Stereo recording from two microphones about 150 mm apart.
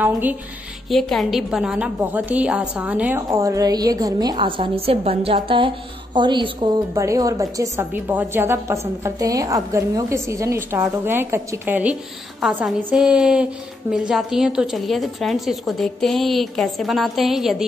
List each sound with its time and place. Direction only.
0.0 s a woman's voice: 10° right (ahead or behind)
0.8 s a woman's voice: centre (ahead or behind)